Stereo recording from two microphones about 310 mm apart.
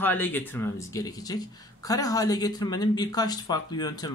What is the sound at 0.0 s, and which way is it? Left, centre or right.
Speech, centre.